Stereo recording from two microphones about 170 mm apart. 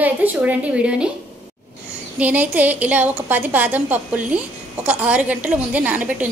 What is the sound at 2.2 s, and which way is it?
A woman's voice, 10° right (ahead or behind).